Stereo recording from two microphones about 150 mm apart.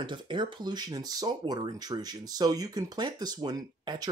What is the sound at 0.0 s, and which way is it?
Speech, 30° right (ahead or behind).